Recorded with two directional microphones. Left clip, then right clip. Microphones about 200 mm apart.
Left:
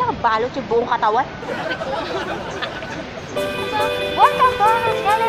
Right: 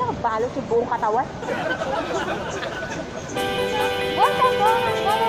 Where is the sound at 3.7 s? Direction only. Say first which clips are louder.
Left 2 dB; centre (ahead or behind).